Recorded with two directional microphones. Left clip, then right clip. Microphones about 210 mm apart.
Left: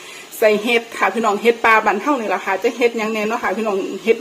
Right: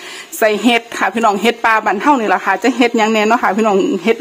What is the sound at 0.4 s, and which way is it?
A woman's voice, 45° right (ahead or behind).